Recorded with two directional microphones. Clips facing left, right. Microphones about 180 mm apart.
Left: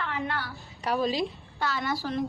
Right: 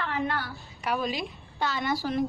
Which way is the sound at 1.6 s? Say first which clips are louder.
Right 1 dB; 20° right (ahead or behind).